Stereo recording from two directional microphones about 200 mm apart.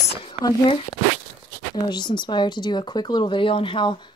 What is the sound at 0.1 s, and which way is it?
Speech, 25° left (ahead or behind).